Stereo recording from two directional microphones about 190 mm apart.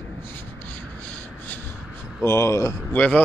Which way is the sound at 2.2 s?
15° left (ahead or behind).